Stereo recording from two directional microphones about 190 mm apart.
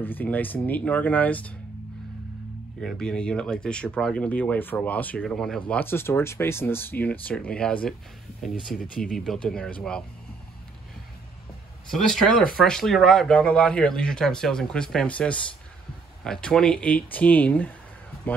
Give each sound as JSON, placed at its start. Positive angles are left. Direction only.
{"t": 0.0, "sound": "speech", "side_deg": 10}
{"t": 2.8, "sound": "speech", "side_deg": 5}
{"t": 8.8, "sound": "speech", "side_deg": 45}
{"t": 9.1, "sound": "speech", "side_deg": 5}
{"t": 11.9, "sound": "speech", "side_deg": 0}